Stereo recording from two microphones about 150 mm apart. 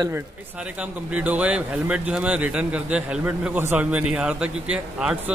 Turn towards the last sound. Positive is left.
turn(degrees=-5)  # may be behind; listen again after turning